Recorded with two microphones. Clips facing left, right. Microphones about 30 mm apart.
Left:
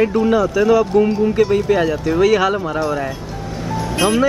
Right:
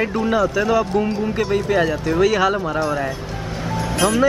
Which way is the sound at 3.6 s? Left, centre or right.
Centre.